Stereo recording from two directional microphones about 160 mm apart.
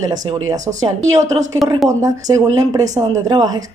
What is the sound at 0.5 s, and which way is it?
A woman's voice, 20° right (ahead or behind).